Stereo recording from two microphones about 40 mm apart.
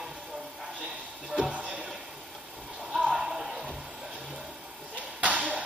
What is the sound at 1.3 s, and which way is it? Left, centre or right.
Music, right.